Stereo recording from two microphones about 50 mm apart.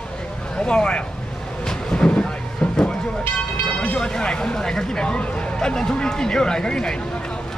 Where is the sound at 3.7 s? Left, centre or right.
Left.